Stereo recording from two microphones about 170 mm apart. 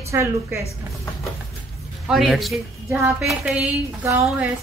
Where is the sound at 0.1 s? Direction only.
15° right (ahead or behind).